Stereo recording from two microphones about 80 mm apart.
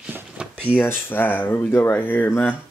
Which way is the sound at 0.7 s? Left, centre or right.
Left.